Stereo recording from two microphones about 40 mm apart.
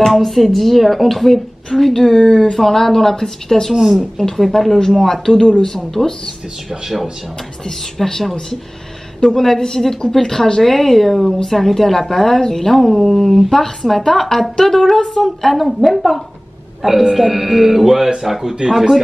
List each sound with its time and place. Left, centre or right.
0.0 s a woman's voice: centre
2.2 s speech: left
2.5 s a woman's voice: centre
7.6 s a woman's voice: centre